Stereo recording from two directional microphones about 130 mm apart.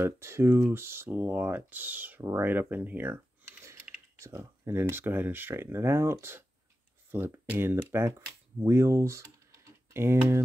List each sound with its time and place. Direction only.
0.0 s speech: 20° right (ahead or behind)